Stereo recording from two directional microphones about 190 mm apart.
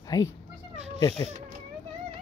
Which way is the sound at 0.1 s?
20° left (ahead or behind).